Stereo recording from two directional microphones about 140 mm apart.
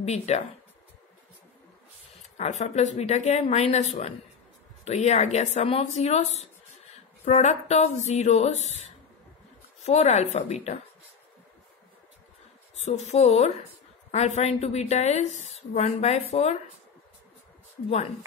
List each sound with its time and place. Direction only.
0.0 s a woman's voice: 50° left (ahead or behind)
2.3 s a woman's voice: 55° left (ahead or behind)
9.8 s a woman's voice: 50° left (ahead or behind)
12.8 s a woman's voice: 50° left (ahead or behind)